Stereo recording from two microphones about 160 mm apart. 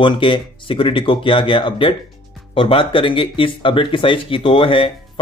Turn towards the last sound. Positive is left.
turn(degrees=35)  # may be behind; listen again after turning